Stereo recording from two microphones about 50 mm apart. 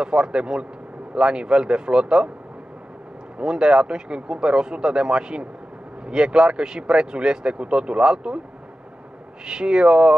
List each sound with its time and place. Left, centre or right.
0.0 s speech: centre
3.3 s speech: centre
9.5 s speech: centre